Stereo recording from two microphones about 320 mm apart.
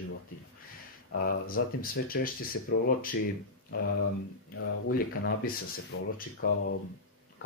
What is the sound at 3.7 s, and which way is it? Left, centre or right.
Speech, left.